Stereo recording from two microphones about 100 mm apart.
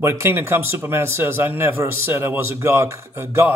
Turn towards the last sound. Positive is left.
turn(degrees=-25)  # may be behind; listen again after turning